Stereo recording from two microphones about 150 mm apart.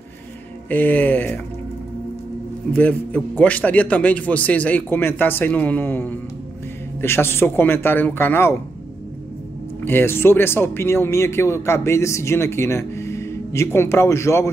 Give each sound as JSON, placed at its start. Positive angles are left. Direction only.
{"t": 0.7, "sound": "speech", "side_deg": 10}
{"t": 2.7, "sound": "speech", "side_deg": 10}
{"t": 9.8, "sound": "speech", "side_deg": 15}